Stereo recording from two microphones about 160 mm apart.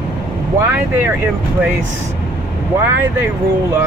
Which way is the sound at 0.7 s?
15° right (ahead or behind).